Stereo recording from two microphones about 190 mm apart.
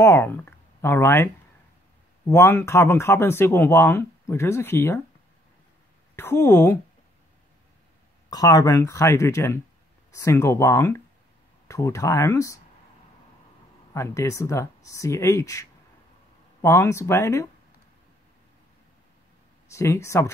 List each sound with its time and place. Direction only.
0.0 s speech: 15° left (ahead or behind)
6.1 s speech: 15° left (ahead or behind)
8.3 s speech: 20° left (ahead or behind)
13.9 s speech: 15° left (ahead or behind)
19.7 s speech: 15° left (ahead or behind)